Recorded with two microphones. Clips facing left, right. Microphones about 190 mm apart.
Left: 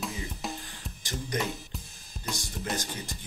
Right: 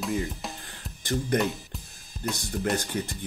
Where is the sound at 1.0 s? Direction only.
55° right (ahead or behind).